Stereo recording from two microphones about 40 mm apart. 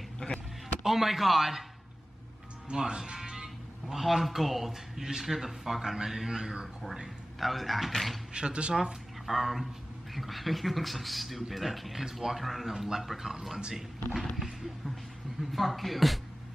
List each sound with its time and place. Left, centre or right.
0.2 s a sound: centre
0.8 s a man's voice: centre
2.7 s speech: centre
3.2 s music: centre
3.8 s a man's voice: centre
7.3 s a man's voice: centre
8.3 s speech: right
9.2 s a man's voice: centre